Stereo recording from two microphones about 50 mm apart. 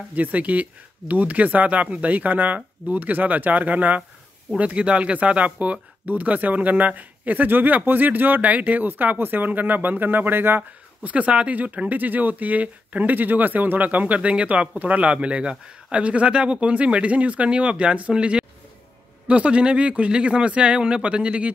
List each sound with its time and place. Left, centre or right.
0.1 s speech: right
11.0 s speech: right